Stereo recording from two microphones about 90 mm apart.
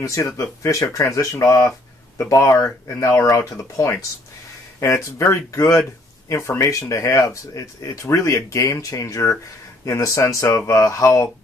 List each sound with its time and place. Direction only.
0.0 s speech: 35° left (ahead or behind)